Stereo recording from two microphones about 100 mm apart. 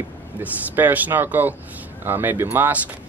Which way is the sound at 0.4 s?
15° right (ahead or behind).